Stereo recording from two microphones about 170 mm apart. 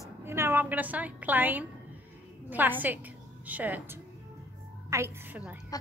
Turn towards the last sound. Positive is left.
turn(degrees=-15)  # may be behind; listen again after turning